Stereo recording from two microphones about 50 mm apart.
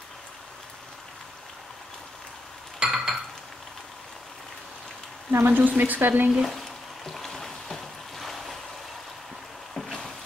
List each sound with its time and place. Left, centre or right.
2.8 s chink: centre
5.3 s speech: right
6.4 s a sound: centre